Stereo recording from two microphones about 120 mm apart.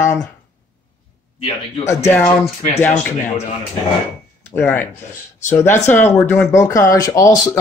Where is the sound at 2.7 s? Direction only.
15° left (ahead or behind).